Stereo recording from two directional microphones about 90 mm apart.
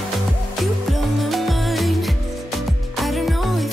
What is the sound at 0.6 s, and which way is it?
Music, centre (ahead or behind).